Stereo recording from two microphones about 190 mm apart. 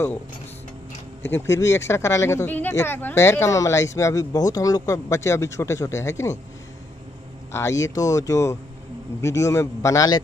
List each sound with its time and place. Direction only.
1.2 s speech: 15° left (ahead or behind)
7.5 s speech: 15° left (ahead or behind)